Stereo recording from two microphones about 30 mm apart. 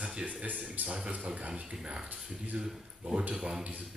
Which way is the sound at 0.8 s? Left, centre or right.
Right.